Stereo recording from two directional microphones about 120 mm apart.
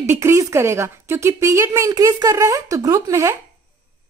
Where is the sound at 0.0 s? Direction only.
25° right (ahead or behind).